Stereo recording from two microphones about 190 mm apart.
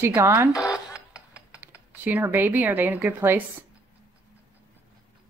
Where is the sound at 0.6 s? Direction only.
5° right (ahead or behind).